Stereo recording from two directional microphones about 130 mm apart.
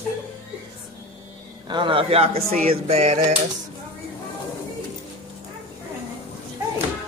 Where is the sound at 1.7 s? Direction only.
40° right (ahead or behind); by 3.3 s 55° right (ahead or behind).